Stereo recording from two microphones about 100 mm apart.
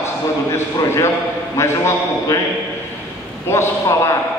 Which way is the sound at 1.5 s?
30° left (ahead or behind).